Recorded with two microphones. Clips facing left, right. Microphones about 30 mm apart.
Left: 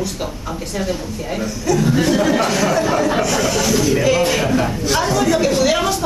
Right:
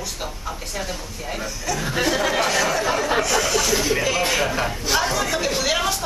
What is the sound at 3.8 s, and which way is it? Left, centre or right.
Speech, centre.